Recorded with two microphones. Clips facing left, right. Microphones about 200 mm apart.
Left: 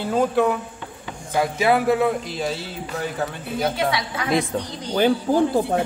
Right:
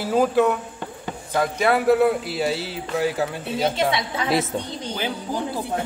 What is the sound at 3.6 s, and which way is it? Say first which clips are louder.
Speech: right 1 dB; 25° right (ahead or behind).